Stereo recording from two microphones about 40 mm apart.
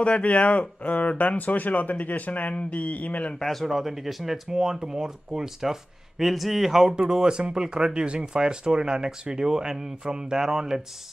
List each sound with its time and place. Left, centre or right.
0.0 s speech: left
3.3 s speech: centre